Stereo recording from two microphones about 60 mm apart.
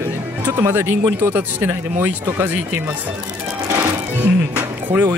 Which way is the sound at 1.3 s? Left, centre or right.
Right.